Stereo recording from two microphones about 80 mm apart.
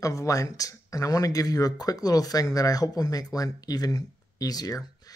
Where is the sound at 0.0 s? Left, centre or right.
Left.